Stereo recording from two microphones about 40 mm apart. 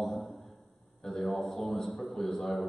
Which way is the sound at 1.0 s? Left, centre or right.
Centre.